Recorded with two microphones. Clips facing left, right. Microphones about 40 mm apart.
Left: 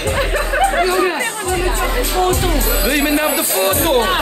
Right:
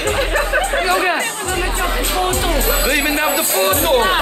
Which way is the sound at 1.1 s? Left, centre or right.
Right.